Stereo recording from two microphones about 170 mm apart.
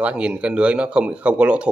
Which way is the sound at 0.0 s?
5° right (ahead or behind).